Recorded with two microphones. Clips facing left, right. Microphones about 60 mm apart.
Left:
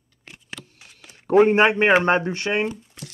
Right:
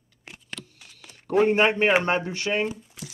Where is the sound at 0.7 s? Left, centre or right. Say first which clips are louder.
Left 2 dB; left.